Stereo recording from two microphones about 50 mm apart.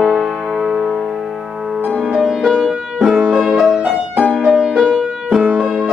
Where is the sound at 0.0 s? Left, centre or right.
Centre.